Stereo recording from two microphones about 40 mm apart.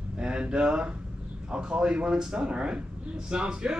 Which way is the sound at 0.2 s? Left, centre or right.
Right.